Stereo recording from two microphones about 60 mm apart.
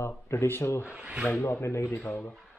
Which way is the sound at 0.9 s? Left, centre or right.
Centre.